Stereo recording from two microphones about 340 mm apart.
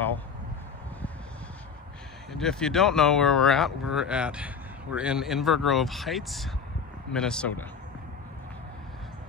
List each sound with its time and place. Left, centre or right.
2.3 s speech: centre